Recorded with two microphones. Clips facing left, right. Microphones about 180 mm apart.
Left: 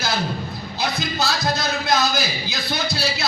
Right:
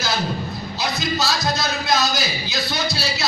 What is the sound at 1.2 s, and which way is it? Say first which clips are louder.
Speech: left 3 dB; 55° left (ahead or behind).